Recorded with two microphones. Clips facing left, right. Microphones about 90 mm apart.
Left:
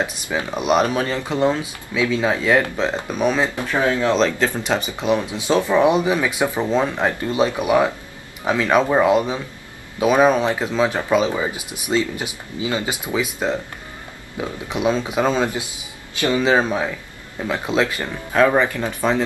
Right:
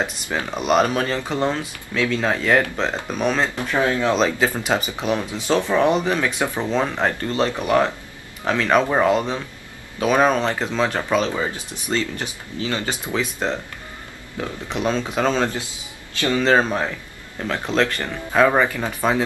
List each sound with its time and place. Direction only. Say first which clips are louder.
0.6 s speech: even; 5° left (ahead or behind)
4.1 s speech: left 1 dB; 5° right (ahead or behind); by 16.4 s 15° left (ahead or behind)
16.4 s speech: right 2 dB; 5° left (ahead or behind)
18.3 s speech: left 1 dB; centre (ahead or behind)